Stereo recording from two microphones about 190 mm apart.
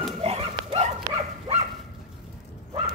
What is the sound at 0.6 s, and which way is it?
Dog, 30° right (ahead or behind).